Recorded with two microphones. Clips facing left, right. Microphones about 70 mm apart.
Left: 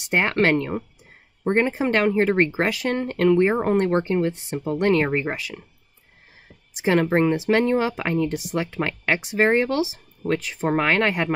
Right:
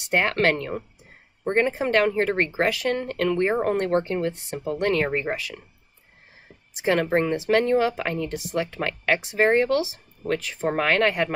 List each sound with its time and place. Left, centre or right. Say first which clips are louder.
0.1 s speech: left 2 dB; left
6.9 s speech: left 2 dB; centre